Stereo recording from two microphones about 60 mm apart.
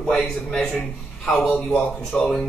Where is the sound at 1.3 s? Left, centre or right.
Centre.